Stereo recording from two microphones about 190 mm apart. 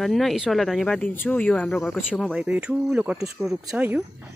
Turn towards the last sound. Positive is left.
turn(degrees=-10)  # may be behind; listen again after turning